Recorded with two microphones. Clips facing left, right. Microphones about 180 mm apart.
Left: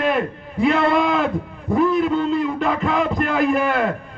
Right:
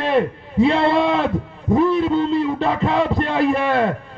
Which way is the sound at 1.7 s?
30° right (ahead or behind).